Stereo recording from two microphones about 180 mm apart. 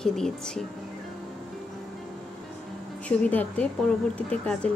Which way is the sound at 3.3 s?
10° left (ahead or behind).